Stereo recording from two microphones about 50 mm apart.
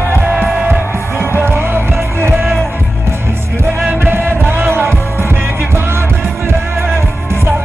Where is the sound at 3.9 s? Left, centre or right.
Right.